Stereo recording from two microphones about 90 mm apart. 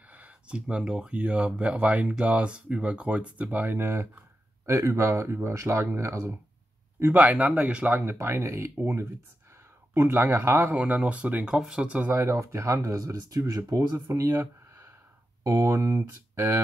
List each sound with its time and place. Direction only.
0.1 s speech: 15° right (ahead or behind); by 6.4 s 30° right (ahead or behind)
7.0 s speech: 20° right (ahead or behind)
9.9 s speech: 25° right (ahead or behind); by 12.1 s 10° right (ahead or behind)
12.1 s speech: 30° right (ahead or behind)